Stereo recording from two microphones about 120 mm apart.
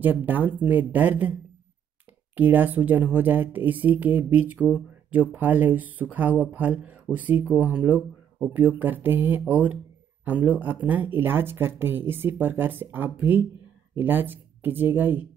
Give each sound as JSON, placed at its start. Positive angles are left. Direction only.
{"t": 0.0, "sound": "speech", "side_deg": -15}
{"t": 2.3, "sound": "speech", "side_deg": -15}